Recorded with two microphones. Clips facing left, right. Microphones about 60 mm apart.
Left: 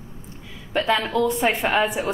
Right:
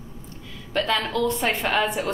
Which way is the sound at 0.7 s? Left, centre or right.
Centre.